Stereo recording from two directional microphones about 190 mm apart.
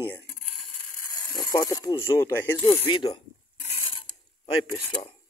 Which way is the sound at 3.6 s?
30° left (ahead or behind).